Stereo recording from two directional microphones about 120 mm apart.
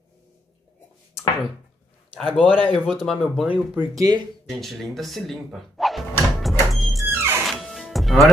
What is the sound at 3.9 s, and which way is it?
Speech, 30° right (ahead or behind).